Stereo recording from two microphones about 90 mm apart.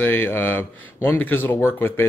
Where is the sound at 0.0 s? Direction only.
25° left (ahead or behind).